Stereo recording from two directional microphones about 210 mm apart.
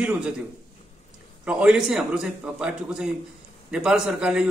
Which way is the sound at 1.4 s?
5° right (ahead or behind).